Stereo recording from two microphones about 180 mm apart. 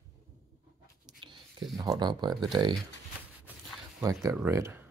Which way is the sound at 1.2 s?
25° right (ahead or behind).